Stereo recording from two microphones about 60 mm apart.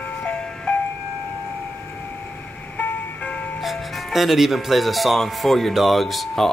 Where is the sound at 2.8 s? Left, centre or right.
Left.